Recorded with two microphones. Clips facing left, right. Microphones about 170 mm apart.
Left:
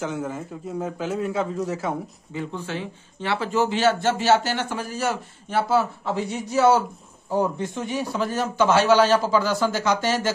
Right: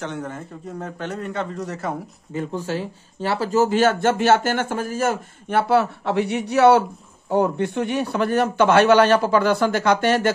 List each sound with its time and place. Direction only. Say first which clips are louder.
0.0 s a man's voice: left 1 dB; 5° left (ahead or behind)
2.3 s a man's voice: right 4 dB; 40° right (ahead or behind); by 10.3 s 60° right (ahead or behind)